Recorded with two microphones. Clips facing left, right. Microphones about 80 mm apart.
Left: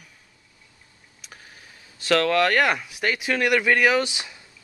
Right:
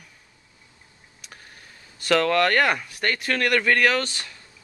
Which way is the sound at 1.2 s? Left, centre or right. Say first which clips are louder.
Even; centre.